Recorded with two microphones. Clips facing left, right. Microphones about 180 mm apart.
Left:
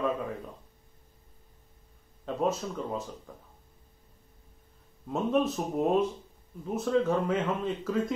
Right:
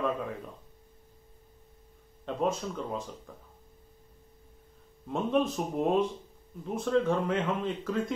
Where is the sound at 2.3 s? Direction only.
5° left (ahead or behind).